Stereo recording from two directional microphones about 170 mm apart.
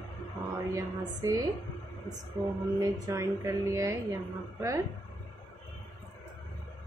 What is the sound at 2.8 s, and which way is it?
A woman's voice, 20° right (ahead or behind).